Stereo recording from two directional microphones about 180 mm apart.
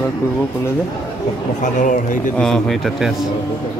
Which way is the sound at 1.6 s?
45° left (ahead or behind).